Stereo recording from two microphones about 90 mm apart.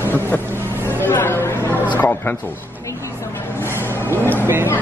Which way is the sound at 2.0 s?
20° left (ahead or behind).